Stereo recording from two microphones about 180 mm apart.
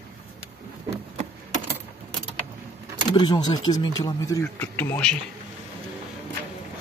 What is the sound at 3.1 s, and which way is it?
Speech, 25° left (ahead or behind).